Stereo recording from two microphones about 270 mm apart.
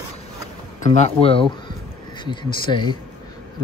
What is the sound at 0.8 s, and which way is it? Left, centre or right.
Speech, left.